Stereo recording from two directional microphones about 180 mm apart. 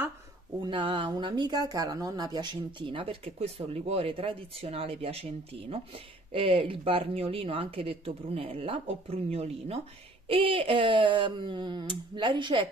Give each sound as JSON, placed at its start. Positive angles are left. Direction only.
{"t": 0.6, "sound": "speech", "side_deg": -30}